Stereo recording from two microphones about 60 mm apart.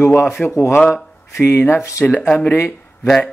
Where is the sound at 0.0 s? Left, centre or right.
Left.